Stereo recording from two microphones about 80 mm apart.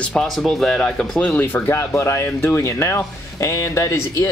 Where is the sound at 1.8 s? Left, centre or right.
Left.